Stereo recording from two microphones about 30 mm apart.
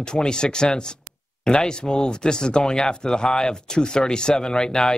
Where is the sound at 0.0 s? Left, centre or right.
Left.